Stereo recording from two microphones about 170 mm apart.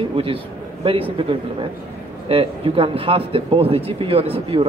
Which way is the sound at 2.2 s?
35° right (ahead or behind).